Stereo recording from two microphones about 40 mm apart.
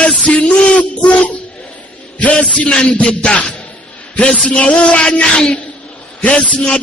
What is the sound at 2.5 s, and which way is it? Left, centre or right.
Speech, left.